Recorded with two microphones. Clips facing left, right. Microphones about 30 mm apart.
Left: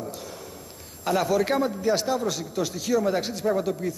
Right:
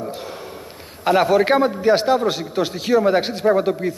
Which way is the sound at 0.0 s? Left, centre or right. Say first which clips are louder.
Right 7 dB; right.